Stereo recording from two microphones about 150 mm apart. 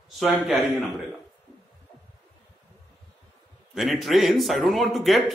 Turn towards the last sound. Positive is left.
turn(degrees=0)  # may be behind; listen again after turning